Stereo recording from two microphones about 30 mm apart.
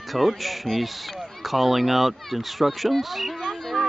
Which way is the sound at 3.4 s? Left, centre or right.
Centre.